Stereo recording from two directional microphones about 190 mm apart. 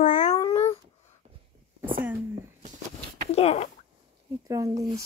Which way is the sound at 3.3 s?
35° left (ahead or behind).